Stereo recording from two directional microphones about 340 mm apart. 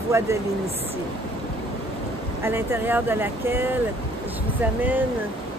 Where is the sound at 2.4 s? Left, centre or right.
Centre.